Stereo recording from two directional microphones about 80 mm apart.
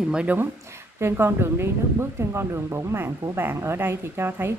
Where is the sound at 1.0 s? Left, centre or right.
Right.